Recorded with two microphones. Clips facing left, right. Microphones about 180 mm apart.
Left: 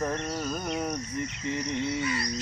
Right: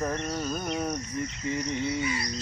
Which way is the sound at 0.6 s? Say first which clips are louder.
Even; 15° left (ahead or behind).